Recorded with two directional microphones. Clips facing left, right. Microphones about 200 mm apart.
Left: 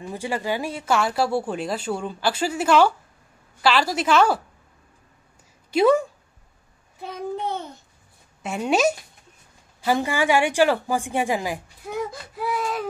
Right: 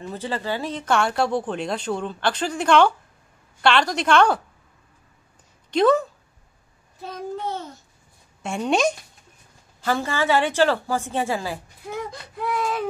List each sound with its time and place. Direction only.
0.0 s a woman's voice: 10° left (ahead or behind)
5.7 s speech: 10° left (ahead or behind)
8.4 s a woman's voice: 5° left (ahead or behind)
11.9 s baby cry: 5° left (ahead or behind)